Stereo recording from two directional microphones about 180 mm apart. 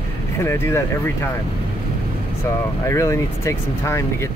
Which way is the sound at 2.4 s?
15° left (ahead or behind).